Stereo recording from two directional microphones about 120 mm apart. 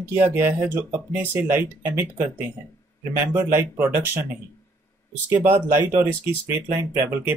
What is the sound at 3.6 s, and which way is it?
Speech, 15° right (ahead or behind).